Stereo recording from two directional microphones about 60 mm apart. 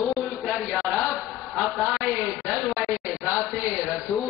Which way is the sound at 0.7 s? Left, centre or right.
Centre.